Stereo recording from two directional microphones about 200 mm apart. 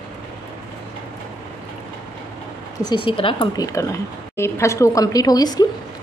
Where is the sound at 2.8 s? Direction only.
25° left (ahead or behind).